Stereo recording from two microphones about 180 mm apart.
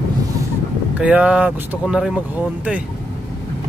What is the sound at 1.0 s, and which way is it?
Speech, 5° right (ahead or behind).